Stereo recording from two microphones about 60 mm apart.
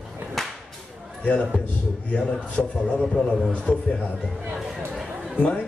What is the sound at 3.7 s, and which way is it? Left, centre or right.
Speech, left.